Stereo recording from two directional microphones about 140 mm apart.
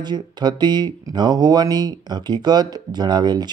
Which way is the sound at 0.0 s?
30° right (ahead or behind).